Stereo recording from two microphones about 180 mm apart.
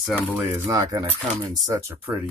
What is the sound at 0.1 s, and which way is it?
Speech, 10° right (ahead or behind).